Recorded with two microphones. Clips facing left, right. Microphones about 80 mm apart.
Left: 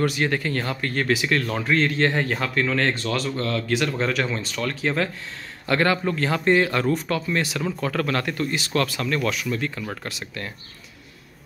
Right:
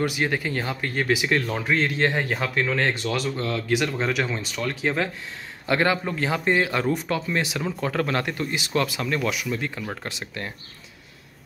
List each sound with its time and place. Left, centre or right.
0.0 s speech: centre